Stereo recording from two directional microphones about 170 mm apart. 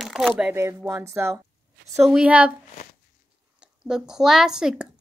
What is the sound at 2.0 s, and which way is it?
Speech, 5° right (ahead or behind).